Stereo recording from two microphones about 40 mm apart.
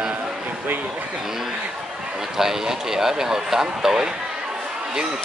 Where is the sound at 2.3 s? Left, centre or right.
Centre.